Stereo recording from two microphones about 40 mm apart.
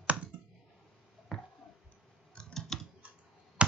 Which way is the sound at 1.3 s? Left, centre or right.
Centre.